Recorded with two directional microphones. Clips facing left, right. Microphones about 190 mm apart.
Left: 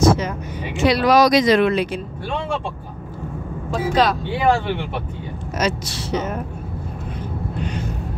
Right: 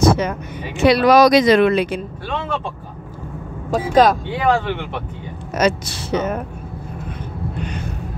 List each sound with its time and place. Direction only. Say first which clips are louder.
0.0 s vehicle: right 1 dB; 60° right (ahead or behind)
0.7 s speech: right 3 dB; 60° right (ahead or behind)
3.7 s speech: right 4 dB; 45° right (ahead or behind)
4.5 s speech: right 1 dB; 10° left (ahead or behind)
5.6 s speech: right 5 dB; 60° right (ahead or behind)